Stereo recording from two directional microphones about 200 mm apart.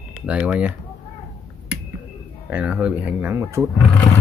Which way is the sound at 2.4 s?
5° right (ahead or behind).